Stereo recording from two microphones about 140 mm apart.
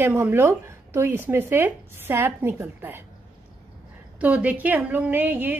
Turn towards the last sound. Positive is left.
turn(degrees=-15)  # may be behind; listen again after turning